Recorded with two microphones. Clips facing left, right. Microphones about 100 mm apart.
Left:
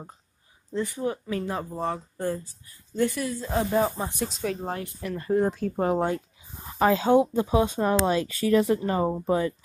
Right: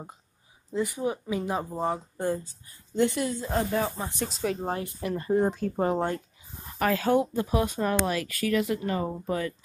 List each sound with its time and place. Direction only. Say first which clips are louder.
0.7 s speech: even; 15° right (ahead or behind)
3.7 s speech: left 4 dB; 20° left (ahead or behind)
4.4 s speech: right 3 dB; 15° right (ahead or behind)
5.6 s speech: left 2 dB; centre (ahead or behind)
6.8 s speech: left 4 dB; 20° left (ahead or behind)